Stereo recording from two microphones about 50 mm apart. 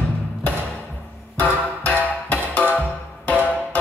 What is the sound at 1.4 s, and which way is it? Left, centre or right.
Music, left.